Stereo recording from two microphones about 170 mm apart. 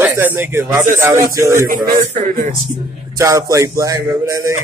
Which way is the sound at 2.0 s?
50° right (ahead or behind).